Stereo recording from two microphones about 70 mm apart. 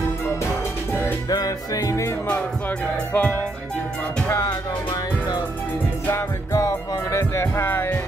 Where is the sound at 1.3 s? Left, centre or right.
Left.